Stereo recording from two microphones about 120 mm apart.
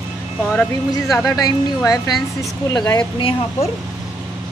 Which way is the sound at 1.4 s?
30° left (ahead or behind).